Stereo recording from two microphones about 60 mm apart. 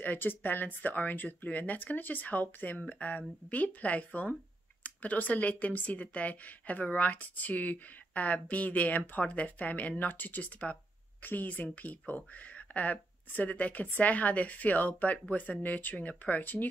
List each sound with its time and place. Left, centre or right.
0.0 s speech: left